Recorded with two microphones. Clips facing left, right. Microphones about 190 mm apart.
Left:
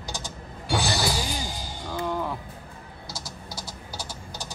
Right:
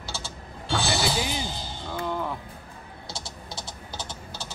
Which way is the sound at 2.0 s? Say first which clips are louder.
Left 1 dB; centre (ahead or behind).